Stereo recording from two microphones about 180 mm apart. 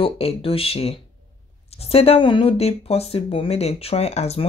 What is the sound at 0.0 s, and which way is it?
Speech, 30° left (ahead or behind).